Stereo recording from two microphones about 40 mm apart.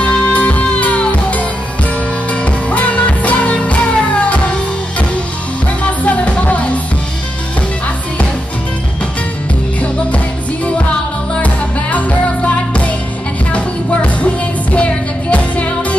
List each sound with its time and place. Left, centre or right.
0.0 s music: left
5.9 s music: left
9.8 s music: left